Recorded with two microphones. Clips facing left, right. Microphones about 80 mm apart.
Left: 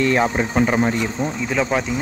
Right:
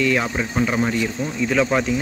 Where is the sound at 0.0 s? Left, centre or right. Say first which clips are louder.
Left 3 dB; left.